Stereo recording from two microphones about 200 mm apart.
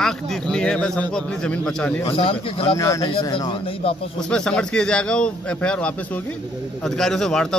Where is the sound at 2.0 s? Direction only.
30° left (ahead or behind).